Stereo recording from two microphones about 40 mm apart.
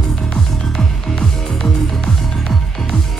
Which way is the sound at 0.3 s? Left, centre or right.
Centre.